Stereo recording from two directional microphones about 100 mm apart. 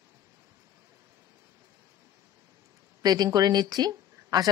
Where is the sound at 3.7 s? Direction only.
40° right (ahead or behind).